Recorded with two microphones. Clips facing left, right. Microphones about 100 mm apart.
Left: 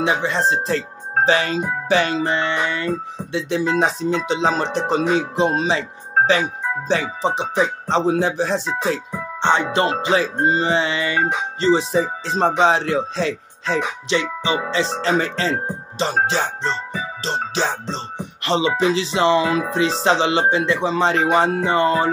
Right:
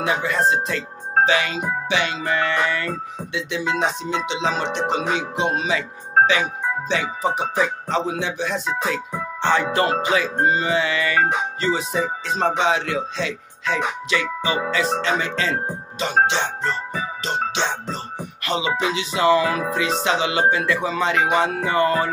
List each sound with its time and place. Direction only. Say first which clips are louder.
0.0 s speech: left 1 dB; 25° left (ahead or behind)
1.9 s music: left 6 dB; 40° left (ahead or behind)
9.4 s music: left 2 dB; 20° left (ahead or behind)